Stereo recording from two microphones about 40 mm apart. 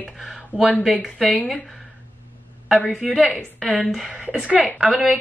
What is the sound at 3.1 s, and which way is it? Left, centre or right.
Speech, centre.